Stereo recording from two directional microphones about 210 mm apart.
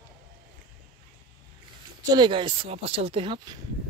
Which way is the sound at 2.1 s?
20° right (ahead or behind).